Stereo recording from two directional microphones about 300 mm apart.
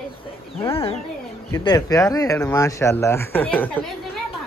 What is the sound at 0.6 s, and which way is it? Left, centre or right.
Speech, centre.